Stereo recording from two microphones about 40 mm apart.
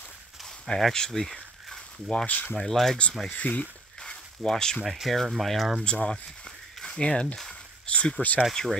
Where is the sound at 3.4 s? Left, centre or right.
Left.